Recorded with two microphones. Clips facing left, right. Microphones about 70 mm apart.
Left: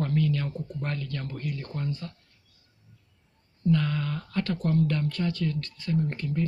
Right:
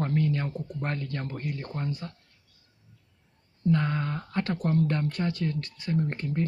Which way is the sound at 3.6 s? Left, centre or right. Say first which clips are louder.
Even; right.